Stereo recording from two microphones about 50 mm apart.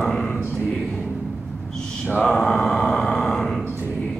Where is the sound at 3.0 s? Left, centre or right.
Centre.